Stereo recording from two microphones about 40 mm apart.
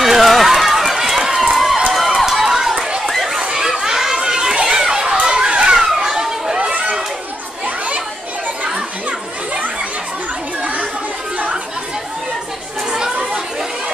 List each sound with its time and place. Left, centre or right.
0.0 s run: centre
3.3 s a sound: centre
6.0 s chatter: centre
7.6 s a sound: right
10.6 s chatter: right
12.9 s chatter: centre